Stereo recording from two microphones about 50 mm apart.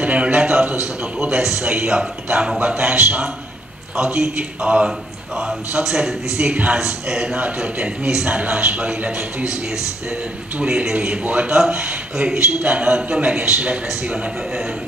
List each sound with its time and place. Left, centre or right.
0.0 s a man's voice: right
6.8 s speech: centre
7.3 s a man's voice: right
10.6 s a man's voice: centre